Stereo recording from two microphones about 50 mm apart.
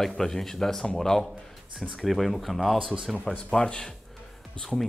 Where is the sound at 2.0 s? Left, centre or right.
Centre.